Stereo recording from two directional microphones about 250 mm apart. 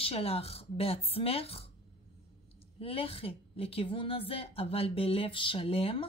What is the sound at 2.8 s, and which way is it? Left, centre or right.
Speech, left.